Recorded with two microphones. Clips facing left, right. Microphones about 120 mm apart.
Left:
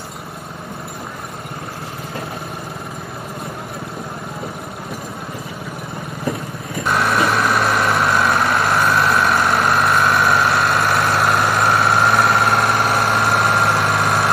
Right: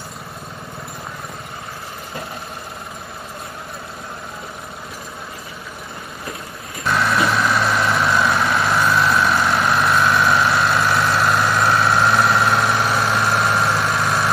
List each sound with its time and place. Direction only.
6.9 s vehicle: 10° left (ahead or behind)
13.9 s vehicle: 65° left (ahead or behind)